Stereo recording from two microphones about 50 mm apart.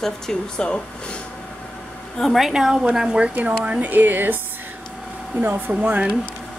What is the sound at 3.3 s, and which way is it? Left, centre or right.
Speech, right.